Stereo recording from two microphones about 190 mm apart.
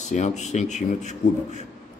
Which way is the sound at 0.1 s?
40° left (ahead or behind).